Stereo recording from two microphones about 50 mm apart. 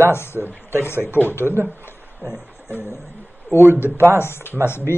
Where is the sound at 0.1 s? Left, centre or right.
Left.